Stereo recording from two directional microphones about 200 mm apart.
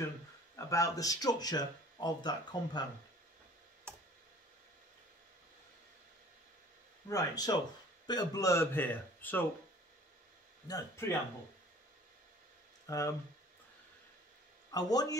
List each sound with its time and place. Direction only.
0.6 s speech: 15° left (ahead or behind)
7.1 s speech: 20° left (ahead or behind)
10.7 s speech: 15° left (ahead or behind)
12.8 s speech: 15° left (ahead or behind)
14.7 s speech: 20° left (ahead or behind)